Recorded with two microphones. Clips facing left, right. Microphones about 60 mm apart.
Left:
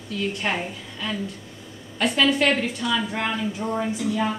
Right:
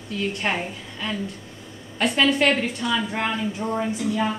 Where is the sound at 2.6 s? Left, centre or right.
Right.